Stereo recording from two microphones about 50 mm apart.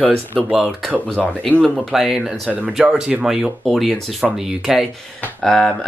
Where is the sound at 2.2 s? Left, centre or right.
Right.